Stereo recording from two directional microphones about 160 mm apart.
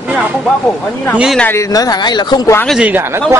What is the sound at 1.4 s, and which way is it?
Speech, 15° left (ahead or behind).